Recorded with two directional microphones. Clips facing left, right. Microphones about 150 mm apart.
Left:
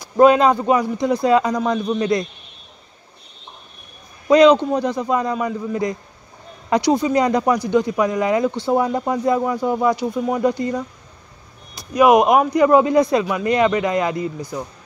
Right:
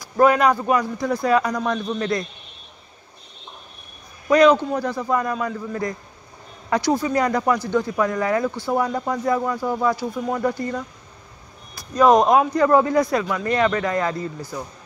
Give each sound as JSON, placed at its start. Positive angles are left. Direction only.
{"t": 0.0, "sound": "speech", "side_deg": 20}
{"t": 4.3, "sound": "speech", "side_deg": 20}